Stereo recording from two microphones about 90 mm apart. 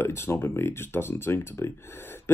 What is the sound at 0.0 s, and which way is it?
Speech, 25° left (ahead or behind).